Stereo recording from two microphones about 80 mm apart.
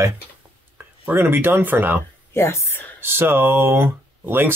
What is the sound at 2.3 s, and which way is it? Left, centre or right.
Speech, left.